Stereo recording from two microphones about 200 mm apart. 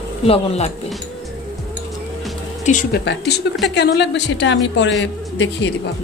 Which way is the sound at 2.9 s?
55° left (ahead or behind).